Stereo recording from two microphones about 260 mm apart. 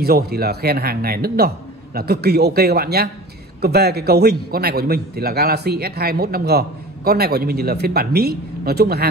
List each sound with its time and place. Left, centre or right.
0.0 s a man's voice: right